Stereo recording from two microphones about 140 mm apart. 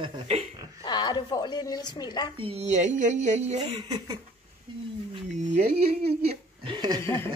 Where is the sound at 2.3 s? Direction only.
45° right (ahead or behind).